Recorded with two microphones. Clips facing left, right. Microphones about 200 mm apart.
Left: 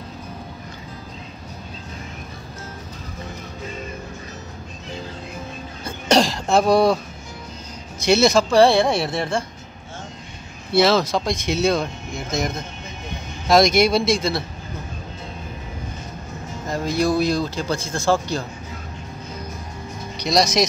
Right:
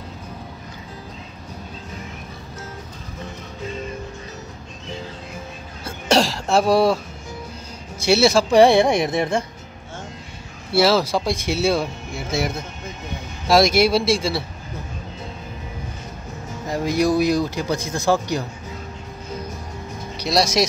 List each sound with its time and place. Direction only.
5.9 s cough: 5° right (ahead or behind)
8.0 s speech: 5° right (ahead or behind)
8.5 s speech: 20° right (ahead or behind)
10.7 s speech: 5° right (ahead or behind)
16.6 s speech: 15° right (ahead or behind)
20.2 s speech: 5° right (ahead or behind)